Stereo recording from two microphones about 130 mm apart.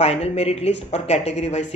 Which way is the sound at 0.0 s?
55° left (ahead or behind).